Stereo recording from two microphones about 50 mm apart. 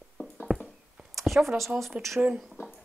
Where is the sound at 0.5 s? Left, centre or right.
Centre.